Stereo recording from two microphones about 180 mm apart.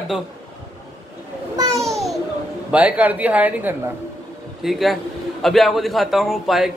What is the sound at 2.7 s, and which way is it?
A man's voice, 10° right (ahead or behind).